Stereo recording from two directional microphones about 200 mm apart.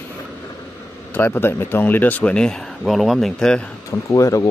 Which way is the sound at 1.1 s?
10° left (ahead or behind).